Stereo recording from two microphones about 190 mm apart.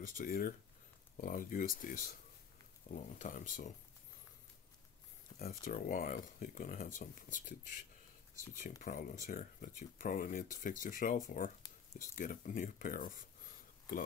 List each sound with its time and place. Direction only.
0.1 s speech: 45° left (ahead or behind)
5.3 s a sound: 40° left (ahead or behind)
5.7 s speech: 45° left (ahead or behind)